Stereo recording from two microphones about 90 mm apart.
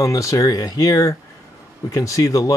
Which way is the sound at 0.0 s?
35° left (ahead or behind).